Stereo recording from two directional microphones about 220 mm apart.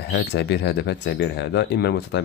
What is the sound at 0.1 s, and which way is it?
Speech, 50° left (ahead or behind).